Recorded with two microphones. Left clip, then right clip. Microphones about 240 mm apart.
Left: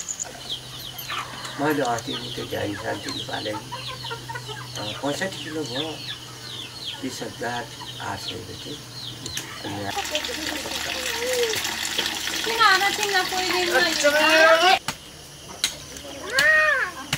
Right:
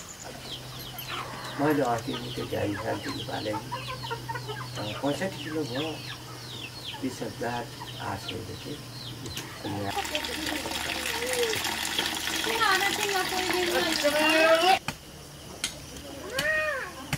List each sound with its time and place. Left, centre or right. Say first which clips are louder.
1.1 s speech: left 4 dB; centre
7.2 s speech: left 3 dB; centre
9.6 s speech: left 2 dB; centre
16.3 s a sound: left 10 dB; centre